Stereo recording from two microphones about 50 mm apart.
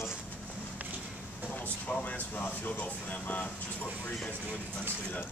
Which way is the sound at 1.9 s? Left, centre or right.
Left.